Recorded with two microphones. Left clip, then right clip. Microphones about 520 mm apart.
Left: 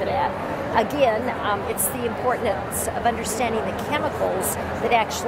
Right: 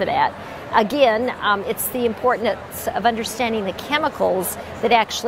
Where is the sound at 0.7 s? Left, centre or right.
Right.